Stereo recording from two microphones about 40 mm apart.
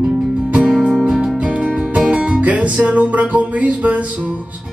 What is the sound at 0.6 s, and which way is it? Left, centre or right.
Music, centre.